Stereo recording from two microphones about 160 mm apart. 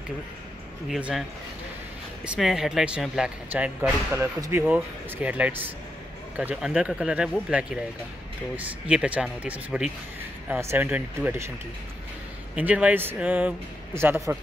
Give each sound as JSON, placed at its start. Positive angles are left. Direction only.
{"t": 0.8, "sound": "speech", "side_deg": -5}
{"t": 2.2, "sound": "speech", "side_deg": -5}
{"t": 12.5, "sound": "speech", "side_deg": -10}